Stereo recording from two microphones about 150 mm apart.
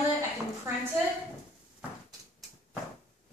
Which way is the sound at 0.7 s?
20° right (ahead or behind).